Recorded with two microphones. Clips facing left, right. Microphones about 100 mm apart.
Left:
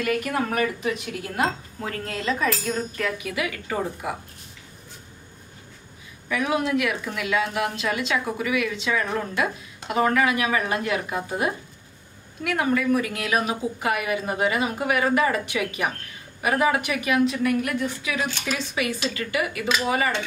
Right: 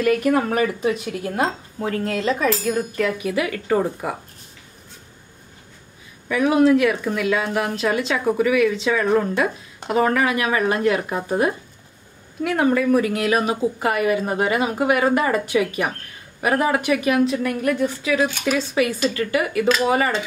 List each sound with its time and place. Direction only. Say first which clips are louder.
0.0 s a woman's voice: right 7 dB; 40° right (ahead or behind)
6.2 s a woman's voice: right 8 dB; 40° right (ahead or behind)